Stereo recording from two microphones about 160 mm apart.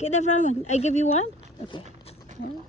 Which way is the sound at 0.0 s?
45° left (ahead or behind).